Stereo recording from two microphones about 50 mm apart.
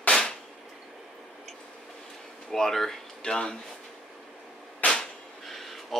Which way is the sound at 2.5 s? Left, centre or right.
Centre.